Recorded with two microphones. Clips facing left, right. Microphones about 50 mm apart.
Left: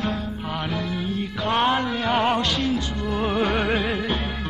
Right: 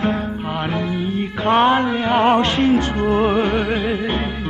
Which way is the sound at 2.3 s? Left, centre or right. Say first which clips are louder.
Right 8 dB; right.